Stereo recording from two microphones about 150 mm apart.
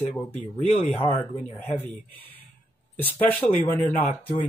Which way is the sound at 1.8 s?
10° left (ahead or behind).